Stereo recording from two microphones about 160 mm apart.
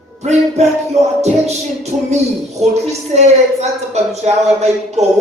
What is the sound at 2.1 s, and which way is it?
Speech, 45° right (ahead or behind).